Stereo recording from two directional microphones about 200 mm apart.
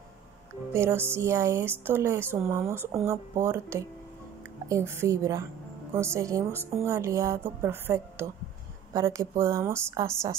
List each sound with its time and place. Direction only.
0.7 s a woman's voice: 10° right (ahead or behind)